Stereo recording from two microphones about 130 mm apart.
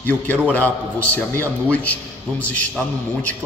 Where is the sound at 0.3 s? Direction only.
15° left (ahead or behind).